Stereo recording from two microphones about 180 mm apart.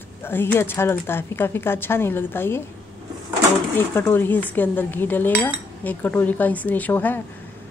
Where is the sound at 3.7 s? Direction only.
10° left (ahead or behind).